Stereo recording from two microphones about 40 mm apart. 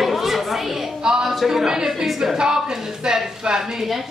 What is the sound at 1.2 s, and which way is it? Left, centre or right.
A woman's voice, centre.